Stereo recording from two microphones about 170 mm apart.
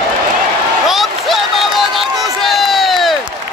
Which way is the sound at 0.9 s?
Centre (ahead or behind).